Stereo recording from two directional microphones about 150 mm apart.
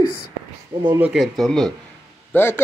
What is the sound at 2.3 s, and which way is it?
Speech, 15° left (ahead or behind).